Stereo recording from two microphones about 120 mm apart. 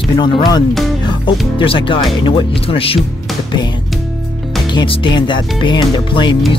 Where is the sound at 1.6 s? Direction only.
45° left (ahead or behind).